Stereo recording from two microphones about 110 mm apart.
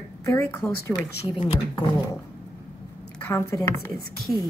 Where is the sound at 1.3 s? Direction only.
45° left (ahead or behind).